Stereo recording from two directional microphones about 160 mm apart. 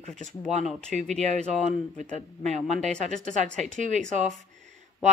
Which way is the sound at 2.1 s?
45° right (ahead or behind).